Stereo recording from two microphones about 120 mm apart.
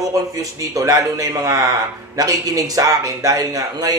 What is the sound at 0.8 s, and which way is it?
A man's voice, 30° right (ahead or behind).